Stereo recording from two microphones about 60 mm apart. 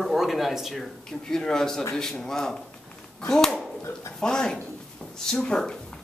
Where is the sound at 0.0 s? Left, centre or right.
Centre.